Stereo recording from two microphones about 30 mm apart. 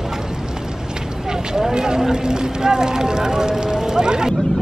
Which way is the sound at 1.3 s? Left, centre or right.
Right.